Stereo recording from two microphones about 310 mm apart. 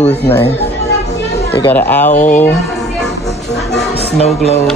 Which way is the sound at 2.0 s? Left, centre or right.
Left.